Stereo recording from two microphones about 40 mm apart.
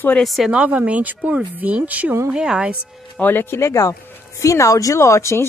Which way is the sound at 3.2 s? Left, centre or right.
Left.